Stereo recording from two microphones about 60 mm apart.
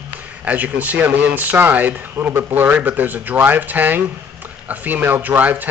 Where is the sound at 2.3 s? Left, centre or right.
Right.